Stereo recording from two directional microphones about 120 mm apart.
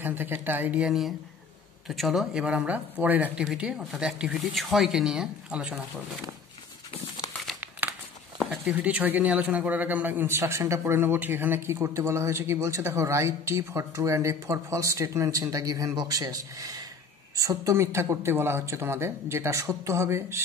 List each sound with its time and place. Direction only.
0.0 s speech: 15° right (ahead or behind)
8.6 s a man's voice: 10° right (ahead or behind)